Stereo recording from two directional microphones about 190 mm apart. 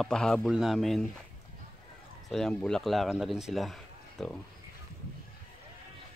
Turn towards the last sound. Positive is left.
turn(degrees=0)  # may be behind; listen again after turning